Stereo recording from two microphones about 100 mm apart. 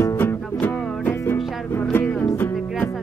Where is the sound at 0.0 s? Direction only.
20° left (ahead or behind).